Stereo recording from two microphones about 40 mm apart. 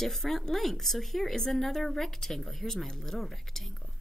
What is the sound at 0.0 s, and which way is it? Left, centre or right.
A woman's voice, centre.